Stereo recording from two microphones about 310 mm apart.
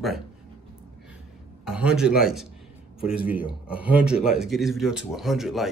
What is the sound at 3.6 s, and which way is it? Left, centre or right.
A man's voice, centre.